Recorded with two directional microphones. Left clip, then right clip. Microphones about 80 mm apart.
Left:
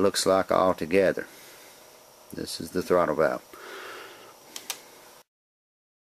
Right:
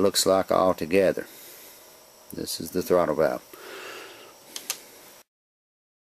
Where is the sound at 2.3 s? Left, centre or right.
Right.